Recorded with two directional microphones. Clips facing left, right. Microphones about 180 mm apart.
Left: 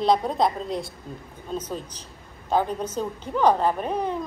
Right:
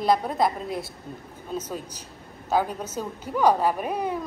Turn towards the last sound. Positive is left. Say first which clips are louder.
# left 1 dB
turn(degrees=-10)  # may be behind; listen again after turning